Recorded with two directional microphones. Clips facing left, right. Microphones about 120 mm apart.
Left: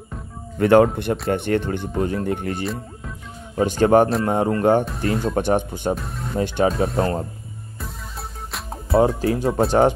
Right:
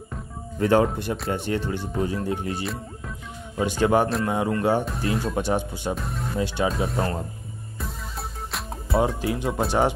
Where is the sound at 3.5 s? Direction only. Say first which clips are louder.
Left 5 dB; 45° left (ahead or behind).